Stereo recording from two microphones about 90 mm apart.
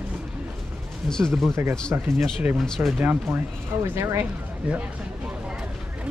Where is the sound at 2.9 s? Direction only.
20° right (ahead or behind).